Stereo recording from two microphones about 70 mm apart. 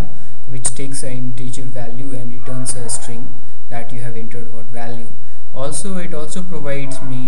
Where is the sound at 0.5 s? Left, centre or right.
Centre.